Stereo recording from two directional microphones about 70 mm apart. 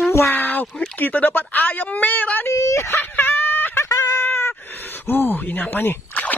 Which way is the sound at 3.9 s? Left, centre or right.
Left.